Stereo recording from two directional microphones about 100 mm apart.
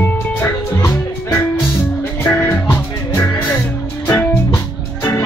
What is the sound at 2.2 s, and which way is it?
Music, 20° left (ahead or behind).